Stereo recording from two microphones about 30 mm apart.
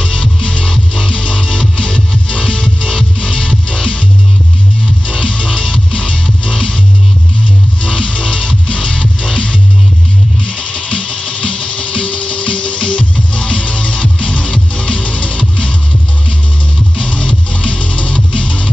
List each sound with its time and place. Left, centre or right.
0.0 s music: left
5.0 s music: left
7.8 s music: left
16.9 s music: left